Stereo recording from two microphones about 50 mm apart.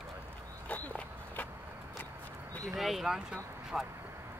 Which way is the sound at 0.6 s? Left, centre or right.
Left.